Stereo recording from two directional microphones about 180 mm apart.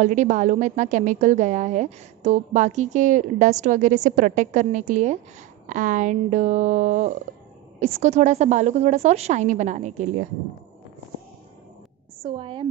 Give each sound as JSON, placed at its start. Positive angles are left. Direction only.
{"t": 0.0, "sound": "a woman's voice", "side_deg": -45}
{"t": 12.2, "sound": "a woman's voice", "side_deg": -30}